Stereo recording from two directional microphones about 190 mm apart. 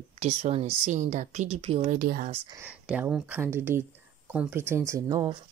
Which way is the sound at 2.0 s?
50° right (ahead or behind).